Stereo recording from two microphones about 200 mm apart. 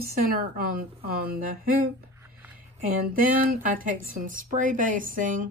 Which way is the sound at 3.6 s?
45° right (ahead or behind).